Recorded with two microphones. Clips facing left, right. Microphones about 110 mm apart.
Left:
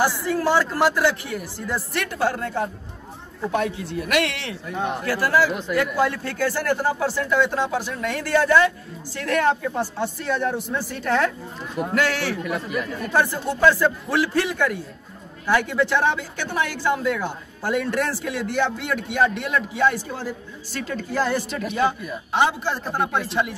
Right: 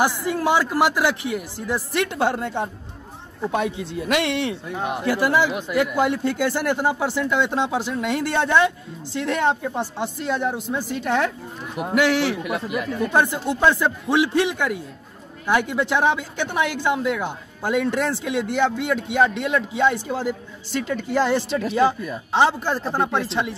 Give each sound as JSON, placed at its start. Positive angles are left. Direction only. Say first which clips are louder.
{"t": 0.0, "sound": "a man's voice", "louder": "even", "side_deg": -15}
{"t": 4.7, "sound": "a man's voice", "louder": "right 1 dB", "side_deg": -10}
{"t": 12.5, "sound": "speech", "louder": "right 1 dB", "side_deg": -5}
{"t": 13.0, "sound": "speech", "louder": "right 2 dB", "side_deg": -20}